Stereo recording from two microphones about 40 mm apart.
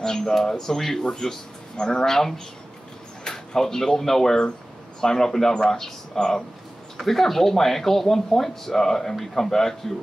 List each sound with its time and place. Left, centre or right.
0.0 s speech: centre
7.0 s speech: centre